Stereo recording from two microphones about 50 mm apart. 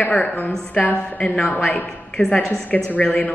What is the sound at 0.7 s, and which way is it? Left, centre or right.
Speech, left.